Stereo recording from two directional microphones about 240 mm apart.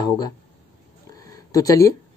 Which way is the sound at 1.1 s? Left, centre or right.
Centre.